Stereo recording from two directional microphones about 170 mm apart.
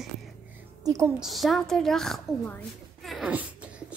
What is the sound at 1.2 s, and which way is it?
A woman's voice, centre (ahead or behind).